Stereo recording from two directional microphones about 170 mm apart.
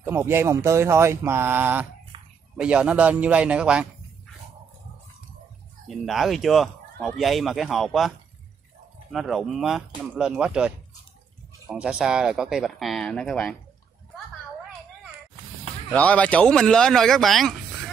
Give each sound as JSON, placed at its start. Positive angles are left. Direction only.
{"t": 0.0, "sound": "speech", "side_deg": -15}
{"t": 2.1, "sound": "a sound", "side_deg": -30}
{"t": 2.5, "sound": "speech", "side_deg": -5}
{"t": 5.9, "sound": "speech", "side_deg": 0}
{"t": 9.1, "sound": "speech", "side_deg": 0}
{"t": 11.7, "sound": "speech", "side_deg": -5}
{"t": 15.9, "sound": "speech", "side_deg": 10}